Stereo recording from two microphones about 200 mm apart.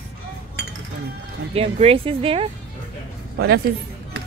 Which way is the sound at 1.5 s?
30° right (ahead or behind).